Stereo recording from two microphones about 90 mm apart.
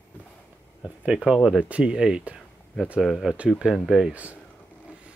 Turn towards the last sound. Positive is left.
turn(degrees=-15)  # may be behind; listen again after turning